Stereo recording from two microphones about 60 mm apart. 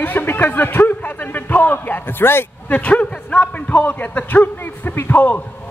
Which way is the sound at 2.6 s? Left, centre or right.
Left.